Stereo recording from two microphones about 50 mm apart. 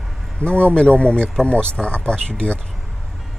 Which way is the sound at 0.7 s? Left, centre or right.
Left.